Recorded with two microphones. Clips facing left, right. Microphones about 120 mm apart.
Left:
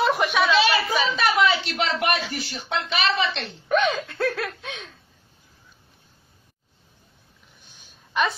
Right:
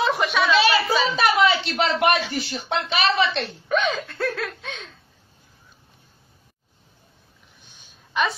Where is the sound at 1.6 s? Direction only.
30° right (ahead or behind).